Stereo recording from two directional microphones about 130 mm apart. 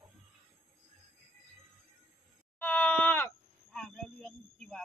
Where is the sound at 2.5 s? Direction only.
15° left (ahead or behind).